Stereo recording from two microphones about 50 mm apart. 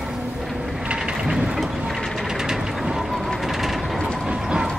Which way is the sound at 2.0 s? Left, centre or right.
Centre.